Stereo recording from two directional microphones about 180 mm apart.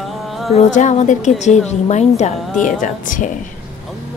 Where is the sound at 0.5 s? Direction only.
40° left (ahead or behind).